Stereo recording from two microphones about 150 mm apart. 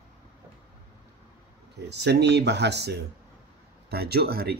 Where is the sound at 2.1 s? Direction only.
90° right.